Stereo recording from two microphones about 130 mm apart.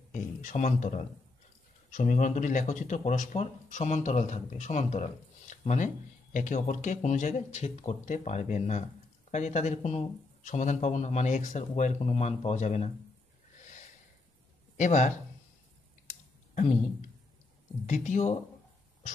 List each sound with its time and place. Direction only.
0.1 s a sound: 70° left (ahead or behind)
1.9 s a man's voice: 80° left; by 12.9 s 60° left (ahead or behind)
14.8 s speech: 60° left (ahead or behind)
17.8 s speech: 70° left (ahead or behind)